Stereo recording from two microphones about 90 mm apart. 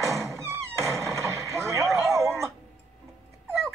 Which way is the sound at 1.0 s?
30° right (ahead or behind).